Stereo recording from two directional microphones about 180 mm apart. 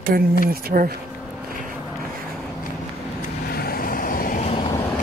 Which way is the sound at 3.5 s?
55° left (ahead or behind).